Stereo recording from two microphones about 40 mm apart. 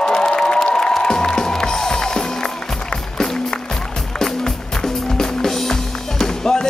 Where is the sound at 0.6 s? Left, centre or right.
Centre.